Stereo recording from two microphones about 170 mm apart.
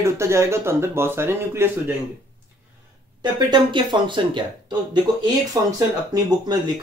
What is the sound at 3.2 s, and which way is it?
Speech, 25° right (ahead or behind).